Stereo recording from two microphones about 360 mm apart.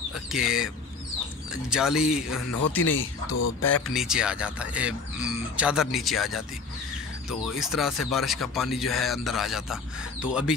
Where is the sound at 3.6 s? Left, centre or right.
Centre.